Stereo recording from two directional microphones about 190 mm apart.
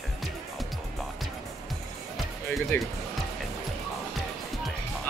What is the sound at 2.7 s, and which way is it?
Speech, 10° left (ahead or behind).